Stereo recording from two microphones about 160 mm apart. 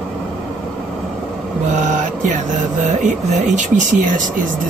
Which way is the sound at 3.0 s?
50° right (ahead or behind).